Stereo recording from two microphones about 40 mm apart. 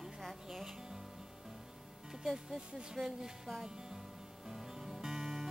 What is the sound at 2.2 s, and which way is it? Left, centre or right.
Speech, centre.